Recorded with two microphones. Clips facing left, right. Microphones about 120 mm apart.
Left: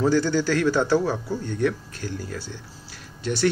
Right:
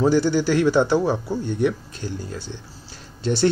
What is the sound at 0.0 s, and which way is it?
A man's voice, 15° right (ahead or behind).